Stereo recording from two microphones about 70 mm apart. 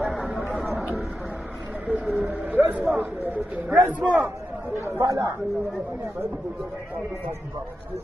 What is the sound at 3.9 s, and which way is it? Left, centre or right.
Speech, right.